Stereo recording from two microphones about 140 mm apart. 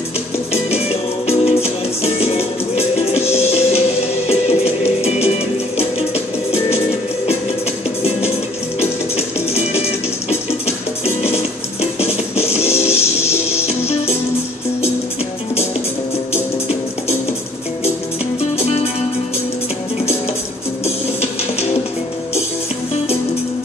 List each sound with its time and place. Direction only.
0.5 s music: 45° left (ahead or behind)
8.7 s music: 45° left (ahead or behind)
11.2 s music: 45° left (ahead or behind)
20.8 s music: 50° left (ahead or behind)